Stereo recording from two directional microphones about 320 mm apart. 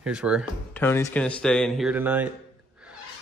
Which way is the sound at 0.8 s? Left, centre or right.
Centre.